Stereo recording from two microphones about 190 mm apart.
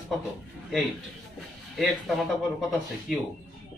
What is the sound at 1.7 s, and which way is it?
Speech, centre (ahead or behind).